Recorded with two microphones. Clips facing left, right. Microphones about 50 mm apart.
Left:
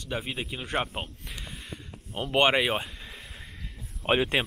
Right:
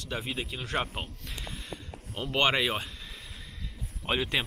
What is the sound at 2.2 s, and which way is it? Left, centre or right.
Speech, left.